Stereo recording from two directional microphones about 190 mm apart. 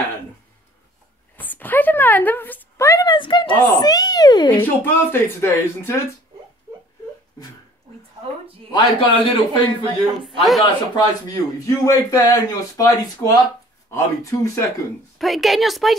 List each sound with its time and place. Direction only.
1.3 s a sound: 10° left (ahead or behind)
4.6 s speech: 10° left (ahead or behind)
8.7 s a man's voice: 25° left (ahead or behind)
15.1 s a woman's voice: centre (ahead or behind)